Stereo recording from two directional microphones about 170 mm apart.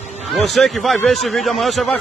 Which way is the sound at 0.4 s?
Centre (ahead or behind).